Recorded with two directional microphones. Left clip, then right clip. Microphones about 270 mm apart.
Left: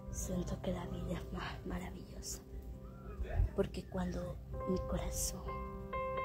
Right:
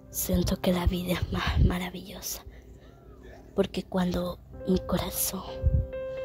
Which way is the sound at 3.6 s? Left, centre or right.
Right.